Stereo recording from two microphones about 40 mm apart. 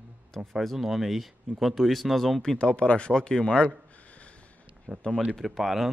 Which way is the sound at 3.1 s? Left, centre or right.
Centre.